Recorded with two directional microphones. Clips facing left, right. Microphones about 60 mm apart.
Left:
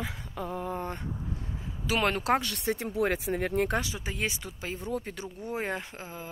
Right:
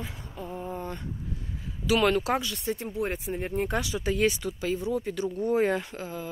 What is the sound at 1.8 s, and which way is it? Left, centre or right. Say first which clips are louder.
Speech: right 5 dB; left.